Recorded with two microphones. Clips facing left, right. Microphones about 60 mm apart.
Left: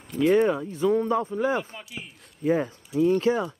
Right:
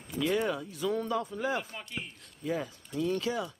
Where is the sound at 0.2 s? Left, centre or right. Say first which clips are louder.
Left 9 dB; left.